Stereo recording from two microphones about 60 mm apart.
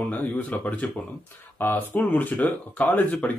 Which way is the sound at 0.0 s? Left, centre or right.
Left.